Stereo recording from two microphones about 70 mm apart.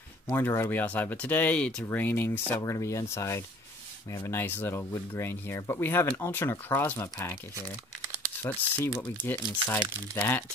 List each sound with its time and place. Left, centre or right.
0.3 s speech: left
2.6 s speech: left
4.3 s speech: left
8.4 s speech: left